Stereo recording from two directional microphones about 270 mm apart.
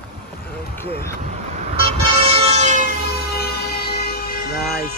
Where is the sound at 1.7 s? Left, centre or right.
Centre.